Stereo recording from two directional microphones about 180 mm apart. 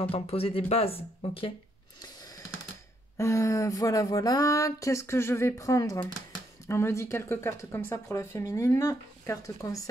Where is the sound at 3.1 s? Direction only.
15° left (ahead or behind).